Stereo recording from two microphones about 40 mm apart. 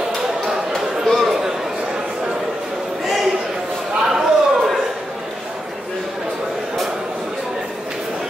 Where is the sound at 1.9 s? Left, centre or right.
Centre.